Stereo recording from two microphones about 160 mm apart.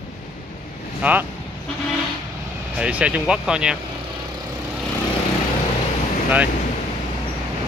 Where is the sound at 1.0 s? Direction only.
10° right (ahead or behind).